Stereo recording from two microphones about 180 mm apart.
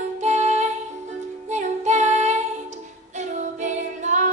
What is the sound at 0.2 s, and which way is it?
Music, 40° right (ahead or behind).